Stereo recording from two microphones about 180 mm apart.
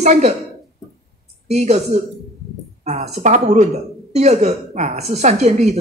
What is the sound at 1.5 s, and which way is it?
A woman's voice, 40° right (ahead or behind).